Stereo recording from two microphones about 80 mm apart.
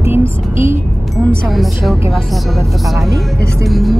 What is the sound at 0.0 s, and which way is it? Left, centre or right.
Speech, right.